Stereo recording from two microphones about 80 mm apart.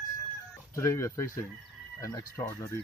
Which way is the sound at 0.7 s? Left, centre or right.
Left.